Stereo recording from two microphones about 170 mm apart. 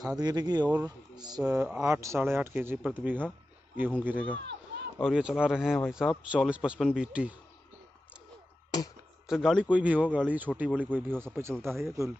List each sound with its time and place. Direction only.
0.0 s speech: 20° right (ahead or behind)
4.4 s a sound: 90° right
5.0 s speech: 5° right (ahead or behind)
9.3 s speech: 5° right (ahead or behind)
11.5 s speech: centre (ahead or behind)